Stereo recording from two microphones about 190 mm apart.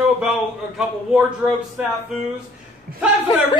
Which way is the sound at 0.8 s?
Centre (ahead or behind).